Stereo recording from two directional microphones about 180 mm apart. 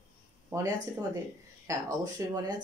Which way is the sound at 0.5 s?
15° right (ahead or behind).